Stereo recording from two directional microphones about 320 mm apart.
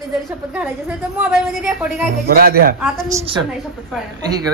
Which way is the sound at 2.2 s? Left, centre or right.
Right.